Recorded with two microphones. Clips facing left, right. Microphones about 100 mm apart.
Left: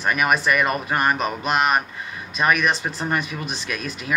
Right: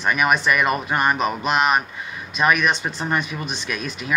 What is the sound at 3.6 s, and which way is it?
Speech, 45° left (ahead or behind).